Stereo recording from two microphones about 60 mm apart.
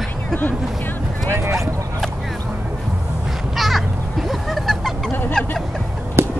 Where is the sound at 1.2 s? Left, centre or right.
Right.